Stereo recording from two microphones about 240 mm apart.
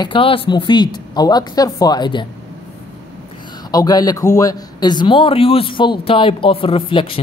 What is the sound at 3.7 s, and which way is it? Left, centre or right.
A man's voice, centre.